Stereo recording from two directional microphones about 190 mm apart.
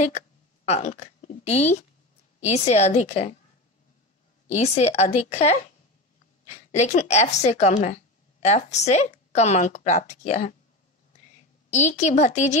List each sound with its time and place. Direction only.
0.7 s a woman's voice: 35° left (ahead or behind)
4.5 s a woman's voice: 35° left (ahead or behind)
11.7 s a woman's voice: 40° left (ahead or behind)